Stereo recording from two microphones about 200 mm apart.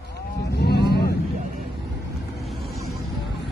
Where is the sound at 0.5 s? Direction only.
55° left (ahead or behind).